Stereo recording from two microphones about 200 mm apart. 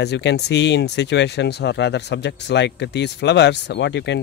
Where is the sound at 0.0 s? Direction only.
60° left (ahead or behind).